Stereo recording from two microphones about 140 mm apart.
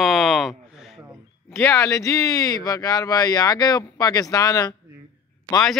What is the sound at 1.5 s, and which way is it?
Speech, 20° left (ahead or behind).